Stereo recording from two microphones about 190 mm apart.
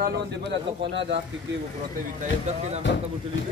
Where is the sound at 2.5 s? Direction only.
35° right (ahead or behind).